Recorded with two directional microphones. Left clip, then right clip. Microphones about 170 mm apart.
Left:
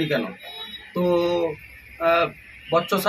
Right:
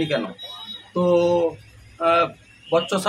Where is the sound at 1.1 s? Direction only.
30° right (ahead or behind).